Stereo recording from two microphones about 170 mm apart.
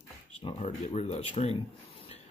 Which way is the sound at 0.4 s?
30° left (ahead or behind).